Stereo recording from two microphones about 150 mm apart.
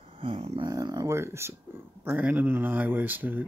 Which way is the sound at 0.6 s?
25° right (ahead or behind).